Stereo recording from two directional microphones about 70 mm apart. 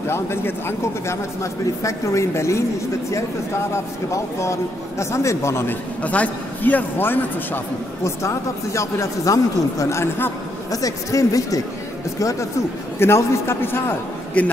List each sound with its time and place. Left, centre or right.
0.1 s a man's voice: left
3.7 s a man's voice: left
6.0 s a man's voice: left
8.0 s a man's voice: left
10.7 s a man's voice: left
13.0 s a man's voice: left